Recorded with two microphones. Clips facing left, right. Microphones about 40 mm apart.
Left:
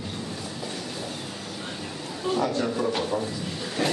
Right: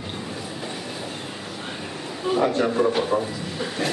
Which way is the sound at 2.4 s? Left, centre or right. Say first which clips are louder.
Right 8 dB; right.